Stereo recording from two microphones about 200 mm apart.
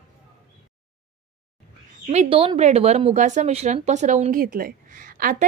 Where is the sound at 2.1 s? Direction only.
30° right (ahead or behind).